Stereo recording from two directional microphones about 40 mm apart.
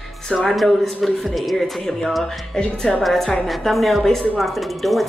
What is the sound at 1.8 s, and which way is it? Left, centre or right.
Speech, centre.